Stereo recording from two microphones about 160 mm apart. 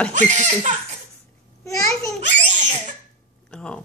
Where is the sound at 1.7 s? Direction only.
Centre (ahead or behind).